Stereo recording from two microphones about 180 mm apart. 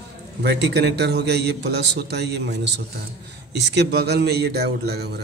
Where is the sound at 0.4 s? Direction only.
70° right (ahead or behind).